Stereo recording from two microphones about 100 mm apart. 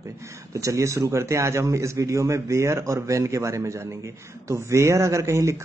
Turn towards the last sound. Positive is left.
turn(degrees=-30)  # may be behind; listen again after turning